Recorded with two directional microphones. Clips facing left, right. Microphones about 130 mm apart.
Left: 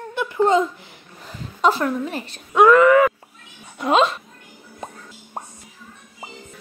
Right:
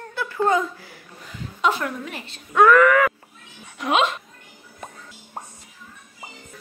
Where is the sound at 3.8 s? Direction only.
35° left (ahead or behind).